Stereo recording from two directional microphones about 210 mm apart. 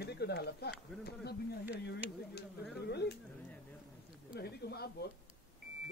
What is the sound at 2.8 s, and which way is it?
Speech, 50° left (ahead or behind).